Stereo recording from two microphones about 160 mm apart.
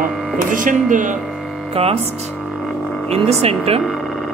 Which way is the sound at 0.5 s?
55° right (ahead or behind).